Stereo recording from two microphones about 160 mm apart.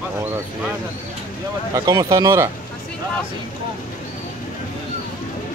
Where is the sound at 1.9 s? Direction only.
20° right (ahead or behind).